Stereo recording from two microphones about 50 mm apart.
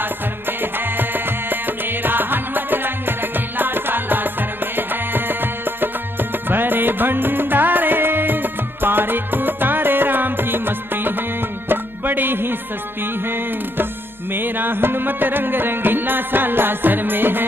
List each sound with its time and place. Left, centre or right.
0.0 s music: right